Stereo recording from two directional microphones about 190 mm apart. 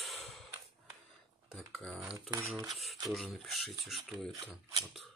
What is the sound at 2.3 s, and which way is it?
Speech, 15° right (ahead or behind).